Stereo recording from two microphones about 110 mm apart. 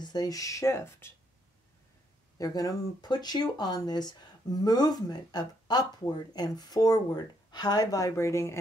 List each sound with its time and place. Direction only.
0.0 s speech: 40° left (ahead or behind)
2.3 s speech: 35° left (ahead or behind)